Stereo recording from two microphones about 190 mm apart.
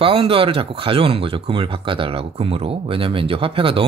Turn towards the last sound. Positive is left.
turn(degrees=-30)  # may be behind; listen again after turning